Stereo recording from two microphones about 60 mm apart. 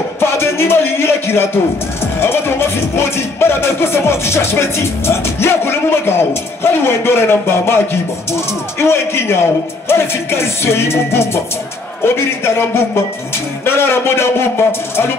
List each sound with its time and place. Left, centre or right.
0.2 s music: left
12.4 s music: left